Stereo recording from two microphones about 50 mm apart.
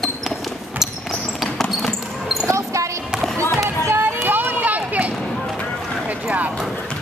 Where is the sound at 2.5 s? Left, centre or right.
Right.